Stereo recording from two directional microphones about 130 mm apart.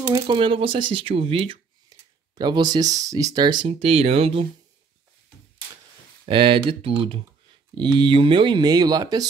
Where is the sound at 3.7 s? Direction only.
50° right (ahead or behind).